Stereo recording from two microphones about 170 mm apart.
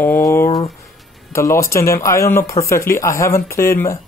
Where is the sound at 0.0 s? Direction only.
15° left (ahead or behind).